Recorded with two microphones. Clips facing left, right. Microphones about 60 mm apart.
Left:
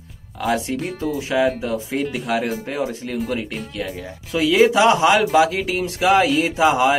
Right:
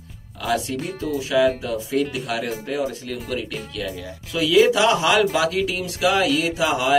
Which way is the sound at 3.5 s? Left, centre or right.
Centre.